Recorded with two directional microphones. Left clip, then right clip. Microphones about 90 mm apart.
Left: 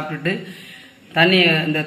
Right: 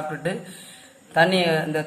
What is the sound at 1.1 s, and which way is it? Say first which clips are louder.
Speech: left 4 dB; 15° right (ahead or behind).